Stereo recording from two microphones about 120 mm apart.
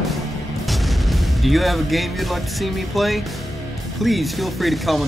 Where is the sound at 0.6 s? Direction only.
Centre (ahead or behind).